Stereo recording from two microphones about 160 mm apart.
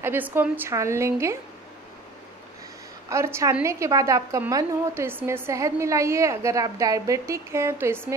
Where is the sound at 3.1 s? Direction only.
15° right (ahead or behind).